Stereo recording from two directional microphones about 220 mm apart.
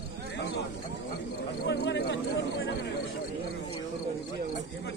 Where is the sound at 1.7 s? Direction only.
55° left (ahead or behind).